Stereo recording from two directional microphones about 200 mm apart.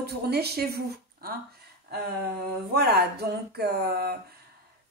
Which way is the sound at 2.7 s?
55° right (ahead or behind).